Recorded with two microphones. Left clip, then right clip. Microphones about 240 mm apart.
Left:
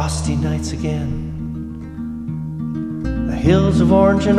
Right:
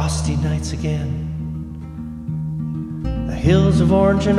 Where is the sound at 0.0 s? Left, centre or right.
Centre.